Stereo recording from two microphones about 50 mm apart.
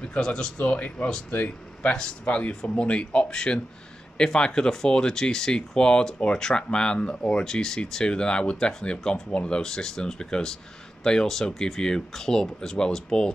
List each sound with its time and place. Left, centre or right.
0.0 s speech: left